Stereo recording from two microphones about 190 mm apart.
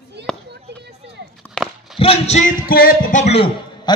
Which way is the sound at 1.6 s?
5° left (ahead or behind).